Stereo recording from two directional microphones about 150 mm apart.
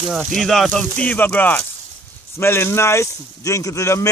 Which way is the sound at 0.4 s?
Centre (ahead or behind).